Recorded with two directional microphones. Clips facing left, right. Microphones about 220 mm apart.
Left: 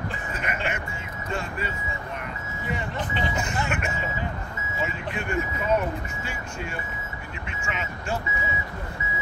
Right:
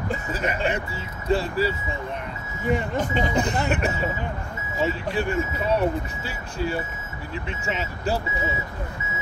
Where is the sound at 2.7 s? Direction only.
45° right (ahead or behind).